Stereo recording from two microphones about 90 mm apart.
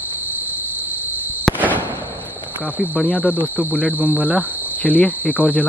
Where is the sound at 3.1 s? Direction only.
20° left (ahead or behind).